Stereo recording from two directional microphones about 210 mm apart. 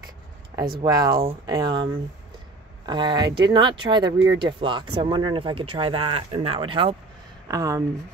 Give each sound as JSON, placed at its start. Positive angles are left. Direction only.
{"t": 0.8, "sound": "speech", "side_deg": -20}
{"t": 2.9, "sound": "speech", "side_deg": -20}